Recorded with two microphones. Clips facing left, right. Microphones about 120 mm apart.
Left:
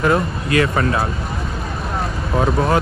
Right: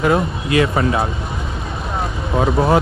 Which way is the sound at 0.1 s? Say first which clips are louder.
Right 1 dB; 25° right (ahead or behind).